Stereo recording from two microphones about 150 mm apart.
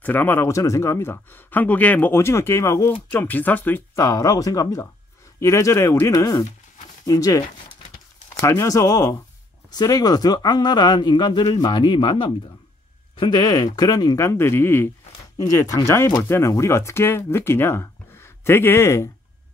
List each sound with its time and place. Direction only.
0.0 s speech: 10° left (ahead or behind)